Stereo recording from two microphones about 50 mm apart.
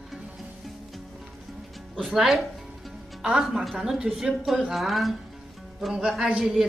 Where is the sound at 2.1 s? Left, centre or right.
Centre.